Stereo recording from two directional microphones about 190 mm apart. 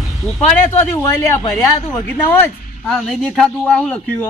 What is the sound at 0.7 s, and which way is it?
Speech, 15° left (ahead or behind).